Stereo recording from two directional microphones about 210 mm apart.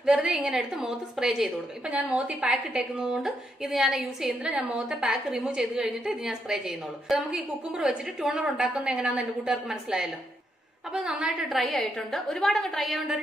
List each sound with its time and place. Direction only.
0.0 s a woman's voice: 5° right (ahead or behind)